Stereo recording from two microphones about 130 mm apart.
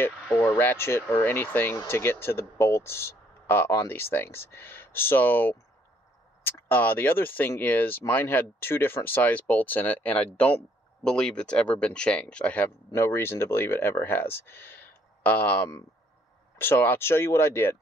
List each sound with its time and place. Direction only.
0.3 s speech: 15° left (ahead or behind)